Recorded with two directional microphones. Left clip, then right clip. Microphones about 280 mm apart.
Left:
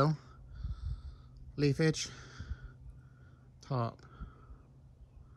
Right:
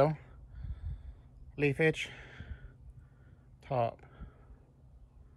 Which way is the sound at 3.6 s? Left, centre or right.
Centre.